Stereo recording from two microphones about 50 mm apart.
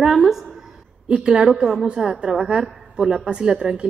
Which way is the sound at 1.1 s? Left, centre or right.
Centre.